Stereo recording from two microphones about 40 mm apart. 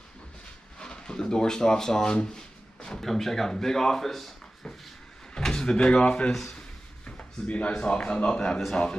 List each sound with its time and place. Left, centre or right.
0.7 s speech: centre
2.3 s a sound: left
3.0 s speech: centre
4.6 s a sound: left
5.3 s speech: centre
7.1 s drawer open or close: left
7.8 s speech: left